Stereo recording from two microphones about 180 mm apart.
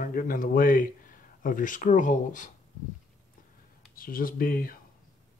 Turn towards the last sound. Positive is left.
turn(degrees=50)  # may be behind; listen again after turning